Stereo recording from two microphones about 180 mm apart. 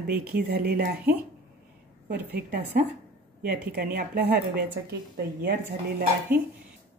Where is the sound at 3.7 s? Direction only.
60° right (ahead or behind).